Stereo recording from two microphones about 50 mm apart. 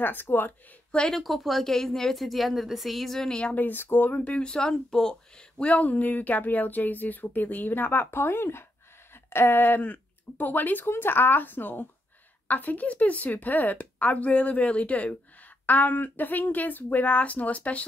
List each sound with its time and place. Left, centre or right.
0.0 s speech: left
1.1 s a woman's voice: centre
3.5 s speech: left
4.1 s speech: left
5.6 s speech: left
8.1 s speech: left